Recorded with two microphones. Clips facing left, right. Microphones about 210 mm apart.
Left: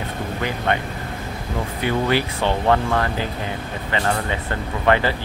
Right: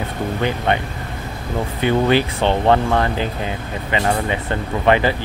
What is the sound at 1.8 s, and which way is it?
Speech, 25° right (ahead or behind).